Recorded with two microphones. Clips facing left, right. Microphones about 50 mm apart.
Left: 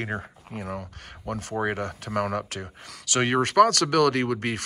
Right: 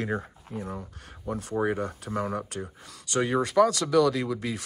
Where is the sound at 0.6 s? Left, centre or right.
Left.